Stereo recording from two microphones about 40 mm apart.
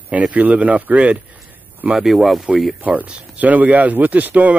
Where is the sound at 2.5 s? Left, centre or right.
Centre.